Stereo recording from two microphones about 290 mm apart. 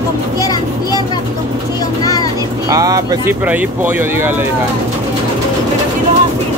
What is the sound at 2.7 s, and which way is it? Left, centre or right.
Speech, centre.